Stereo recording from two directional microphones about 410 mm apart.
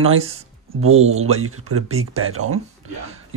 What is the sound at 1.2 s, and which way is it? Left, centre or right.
Speech, right.